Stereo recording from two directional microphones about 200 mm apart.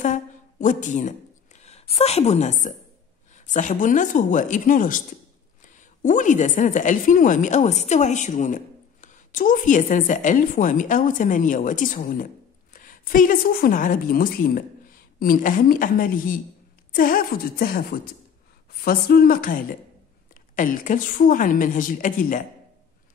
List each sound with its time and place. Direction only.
0.0 s a sound: 40° left (ahead or behind)
3.5 s a woman's voice: 40° left (ahead or behind)
6.0 s a woman's voice: 40° left (ahead or behind)